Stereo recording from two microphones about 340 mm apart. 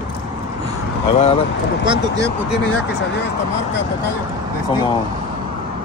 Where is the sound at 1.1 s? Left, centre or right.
Centre.